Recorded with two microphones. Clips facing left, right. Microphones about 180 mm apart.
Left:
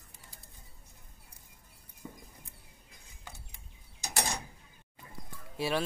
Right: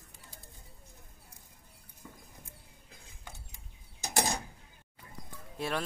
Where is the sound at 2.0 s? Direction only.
25° left (ahead or behind).